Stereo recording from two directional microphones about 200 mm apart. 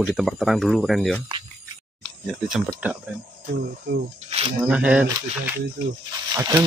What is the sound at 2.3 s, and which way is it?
Speech, centre (ahead or behind).